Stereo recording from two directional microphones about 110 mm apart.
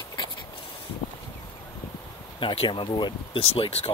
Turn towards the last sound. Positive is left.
turn(degrees=60)  # may be behind; listen again after turning